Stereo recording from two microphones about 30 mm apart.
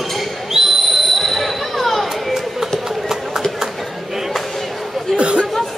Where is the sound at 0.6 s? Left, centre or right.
Centre.